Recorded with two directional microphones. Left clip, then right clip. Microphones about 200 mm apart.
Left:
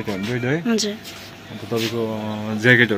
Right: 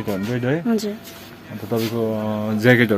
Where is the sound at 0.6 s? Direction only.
10° right (ahead or behind).